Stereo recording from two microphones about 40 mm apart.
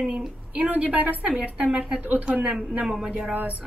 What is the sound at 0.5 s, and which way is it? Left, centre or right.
Speech, right.